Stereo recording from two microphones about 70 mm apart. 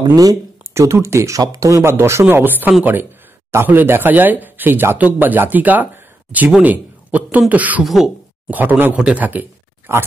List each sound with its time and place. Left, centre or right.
0.0 s speech: right
0.7 s speech: right
2.2 s a man's voice: right
7.8 s speech: centre
8.5 s speech: right
8.9 s speech: centre